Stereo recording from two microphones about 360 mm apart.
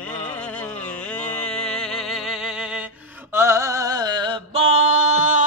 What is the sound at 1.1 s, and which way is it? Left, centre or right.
Music, centre.